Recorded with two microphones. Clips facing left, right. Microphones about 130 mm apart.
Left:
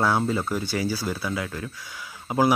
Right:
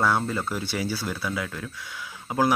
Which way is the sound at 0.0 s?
5° left (ahead or behind).